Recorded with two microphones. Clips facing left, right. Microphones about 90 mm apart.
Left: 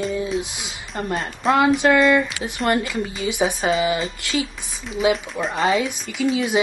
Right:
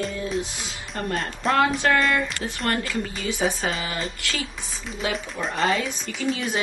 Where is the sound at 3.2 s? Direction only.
15° left (ahead or behind).